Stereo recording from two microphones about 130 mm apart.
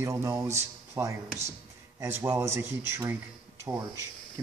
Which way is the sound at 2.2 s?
25° right (ahead or behind).